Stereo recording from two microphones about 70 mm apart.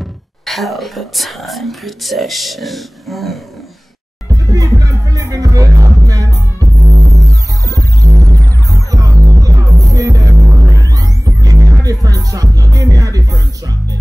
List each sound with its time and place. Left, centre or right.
0.0 s speech: centre
4.5 s music: right